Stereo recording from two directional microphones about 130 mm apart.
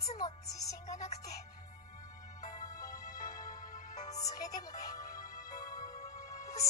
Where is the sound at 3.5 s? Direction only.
90° left.